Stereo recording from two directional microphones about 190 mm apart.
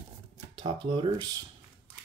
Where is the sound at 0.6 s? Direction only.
25° right (ahead or behind).